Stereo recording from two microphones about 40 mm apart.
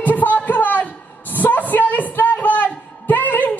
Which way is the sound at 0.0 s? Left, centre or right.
Left.